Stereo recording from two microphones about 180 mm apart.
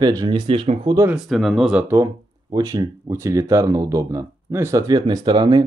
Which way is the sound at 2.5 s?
20° right (ahead or behind).